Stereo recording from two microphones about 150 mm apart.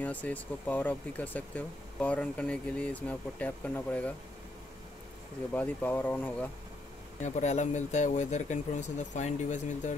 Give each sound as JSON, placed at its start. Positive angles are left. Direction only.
{"t": 0.0, "sound": "speech", "side_deg": 10}
{"t": 5.5, "sound": "speech", "side_deg": 10}
{"t": 7.2, "sound": "speech", "side_deg": 55}